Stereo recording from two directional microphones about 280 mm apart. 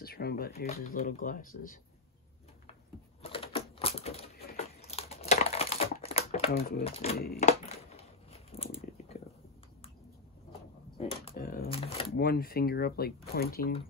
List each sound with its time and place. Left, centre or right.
0.0 s typewriter: left
0.6 s speech: left
3.2 s typewriter: centre
4.6 s typing: left
6.8 s speech: left
7.2 s a sound: left
11.2 s shuffling cards: left
12.2 s speech: left